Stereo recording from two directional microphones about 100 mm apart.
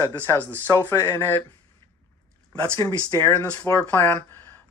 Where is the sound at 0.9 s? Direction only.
25° left (ahead or behind).